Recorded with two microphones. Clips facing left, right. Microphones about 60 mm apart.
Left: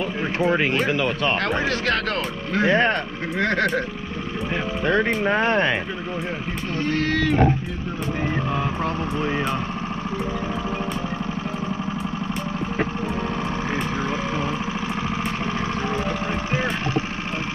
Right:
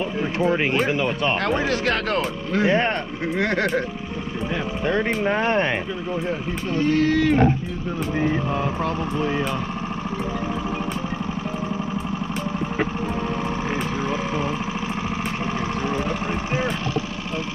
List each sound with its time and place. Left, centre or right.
1.5 s speech: left
4.8 s speech: left
6.8 s speech: left
8.8 s speech: left